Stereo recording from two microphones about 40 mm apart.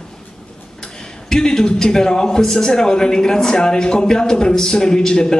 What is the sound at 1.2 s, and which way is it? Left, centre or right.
Speech, centre.